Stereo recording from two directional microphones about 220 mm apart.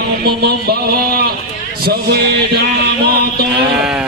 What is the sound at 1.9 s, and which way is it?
Music, 45° right (ahead or behind).